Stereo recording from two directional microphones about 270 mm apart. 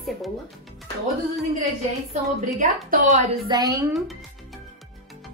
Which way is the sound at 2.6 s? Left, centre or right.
Right.